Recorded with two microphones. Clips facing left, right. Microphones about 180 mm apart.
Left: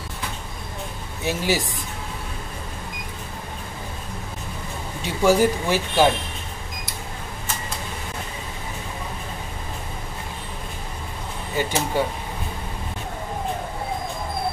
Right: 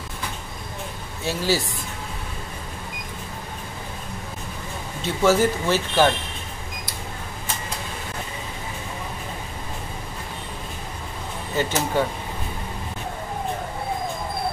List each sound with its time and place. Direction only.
1.2 s speech: 15° left (ahead or behind)
5.0 s speech: 15° left (ahead or behind)
11.6 s air conditioning: 10° left (ahead or behind)
12.0 s speech: 10° left (ahead or behind)